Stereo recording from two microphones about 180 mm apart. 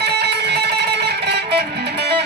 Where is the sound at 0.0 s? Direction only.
70° right (ahead or behind).